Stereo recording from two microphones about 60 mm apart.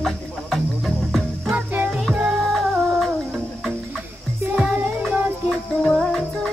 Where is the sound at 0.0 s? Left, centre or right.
Centre.